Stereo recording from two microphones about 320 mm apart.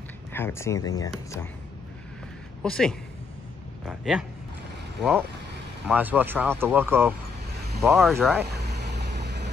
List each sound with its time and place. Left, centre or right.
0.3 s speech: centre
2.6 s speech: centre
5.9 s speech: centre
8.5 s vehicle: right